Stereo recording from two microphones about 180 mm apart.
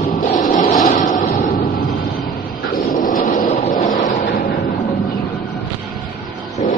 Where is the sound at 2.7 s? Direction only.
45° left (ahead or behind).